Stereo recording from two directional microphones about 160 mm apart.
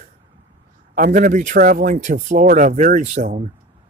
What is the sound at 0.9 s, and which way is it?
Speech, 55° right (ahead or behind).